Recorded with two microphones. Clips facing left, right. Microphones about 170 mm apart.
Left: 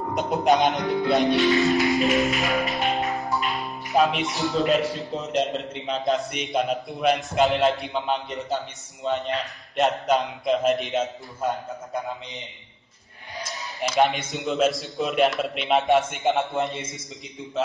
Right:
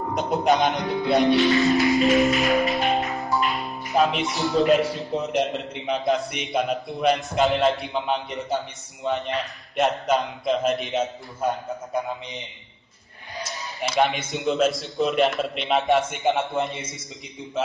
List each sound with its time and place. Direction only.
0.1 s a man's voice: centre (ahead or behind)
1.5 s music: centre (ahead or behind)
4.6 s a man's voice: centre (ahead or behind)
5.1 s a man's voice: 20° right (ahead or behind)
6.0 s a man's voice: centre (ahead or behind)
13.9 s a man's voice: centre (ahead or behind)